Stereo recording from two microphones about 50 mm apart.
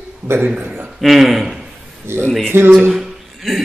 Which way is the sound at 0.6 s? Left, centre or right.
Right.